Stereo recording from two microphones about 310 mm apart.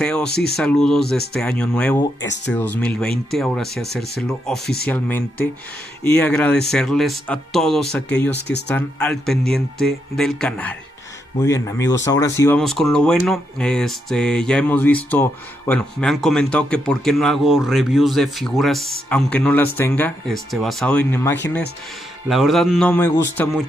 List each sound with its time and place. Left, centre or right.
0.0 s speech: centre
0.3 s speech: left
0.6 s speech: centre
2.2 s speech: left
2.5 s speech: centre